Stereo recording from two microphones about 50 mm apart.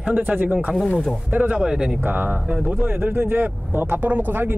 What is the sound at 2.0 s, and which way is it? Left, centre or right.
Speech, right.